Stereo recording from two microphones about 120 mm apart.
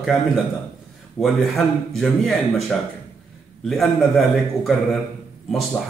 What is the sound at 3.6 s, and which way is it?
Speech, centre (ahead or behind).